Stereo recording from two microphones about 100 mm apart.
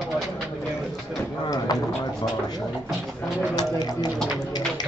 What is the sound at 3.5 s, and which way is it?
Speech, 40° left (ahead or behind).